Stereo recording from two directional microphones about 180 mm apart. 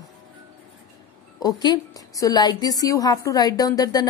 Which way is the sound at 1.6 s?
20° left (ahead or behind).